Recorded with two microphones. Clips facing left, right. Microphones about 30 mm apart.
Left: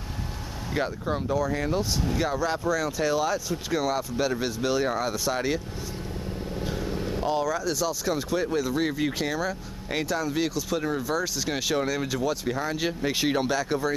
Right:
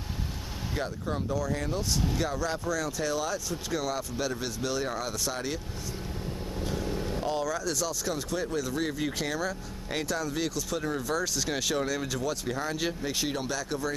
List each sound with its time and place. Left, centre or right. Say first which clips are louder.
0.7 s speech: left 5 dB; left